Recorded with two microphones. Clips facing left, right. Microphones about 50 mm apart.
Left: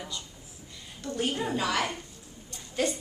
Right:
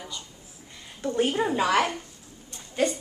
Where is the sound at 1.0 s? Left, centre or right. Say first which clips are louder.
Right 6 dB; right.